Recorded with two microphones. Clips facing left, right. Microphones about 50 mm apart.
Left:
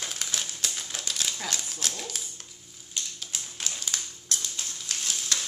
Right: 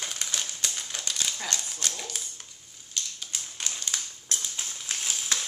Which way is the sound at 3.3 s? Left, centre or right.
Centre.